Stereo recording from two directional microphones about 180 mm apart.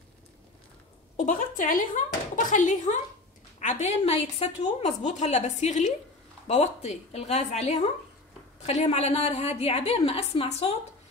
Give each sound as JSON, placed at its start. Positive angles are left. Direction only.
{"t": 1.1, "sound": "a woman's voice", "side_deg": 45}